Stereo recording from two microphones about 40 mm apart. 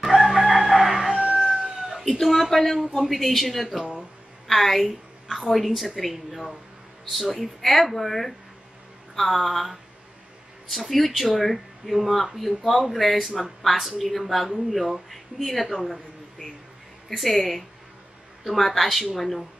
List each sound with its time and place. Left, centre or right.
0.0 s crowing: centre
0.5 s chicken: centre
1.2 s chicken: centre
1.8 s cat: centre
2.0 s a woman's voice: centre
17.1 s a woman's voice: centre